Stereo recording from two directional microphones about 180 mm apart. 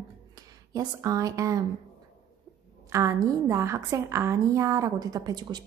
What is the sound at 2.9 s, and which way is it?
A woman's voice, 20° right (ahead or behind).